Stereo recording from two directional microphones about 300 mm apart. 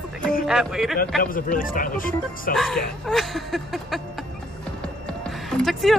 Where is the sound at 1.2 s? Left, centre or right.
Left.